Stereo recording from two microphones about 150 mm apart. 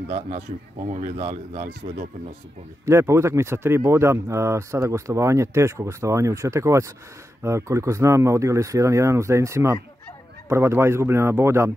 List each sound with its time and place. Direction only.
1.6 s speech: 90° right
2.8 s speech: 20° right (ahead or behind)